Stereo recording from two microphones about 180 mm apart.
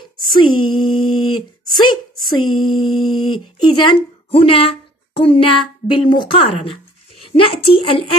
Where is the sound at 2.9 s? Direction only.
Centre (ahead or behind).